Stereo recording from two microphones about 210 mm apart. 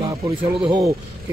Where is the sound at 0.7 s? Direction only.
15° right (ahead or behind).